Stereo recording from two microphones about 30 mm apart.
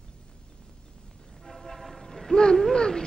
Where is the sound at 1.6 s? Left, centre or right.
Centre.